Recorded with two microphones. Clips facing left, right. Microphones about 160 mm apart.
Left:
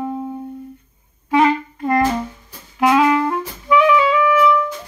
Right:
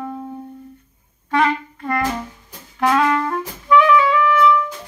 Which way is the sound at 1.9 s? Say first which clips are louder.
Left 5 dB; 25° left (ahead or behind).